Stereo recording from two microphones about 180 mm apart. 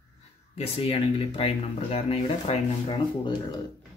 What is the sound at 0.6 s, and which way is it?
Speech, 30° left (ahead or behind).